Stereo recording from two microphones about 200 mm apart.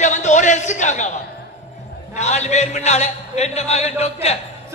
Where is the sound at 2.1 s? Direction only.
35° left (ahead or behind).